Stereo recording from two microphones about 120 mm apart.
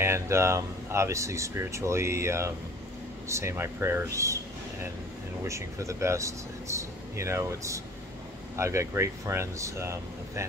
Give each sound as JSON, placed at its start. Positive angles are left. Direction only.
{"t": 0.0, "sound": "speech", "side_deg": -20}
{"t": 5.4, "sound": "speech", "side_deg": -25}